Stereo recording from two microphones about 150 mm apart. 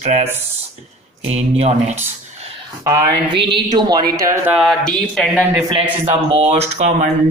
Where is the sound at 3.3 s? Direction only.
35° right (ahead or behind).